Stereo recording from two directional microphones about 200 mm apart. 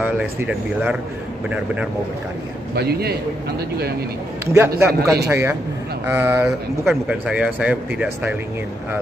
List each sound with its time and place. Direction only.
0.0 s speech: 5° right (ahead or behind)
2.7 s a man's voice: 50° right (ahead or behind)
4.5 s speech: 15° right (ahead or behind)